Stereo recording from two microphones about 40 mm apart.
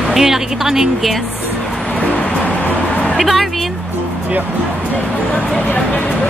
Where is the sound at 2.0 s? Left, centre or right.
Left.